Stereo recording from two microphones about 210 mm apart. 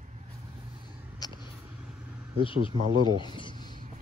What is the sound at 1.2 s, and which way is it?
Vehicle, 20° left (ahead or behind).